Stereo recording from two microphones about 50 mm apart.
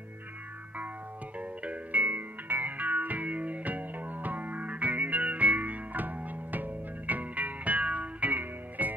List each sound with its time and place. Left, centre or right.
1.4 s music: right